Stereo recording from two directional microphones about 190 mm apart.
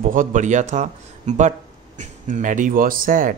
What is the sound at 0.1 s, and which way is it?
A man's voice, 45° right (ahead or behind).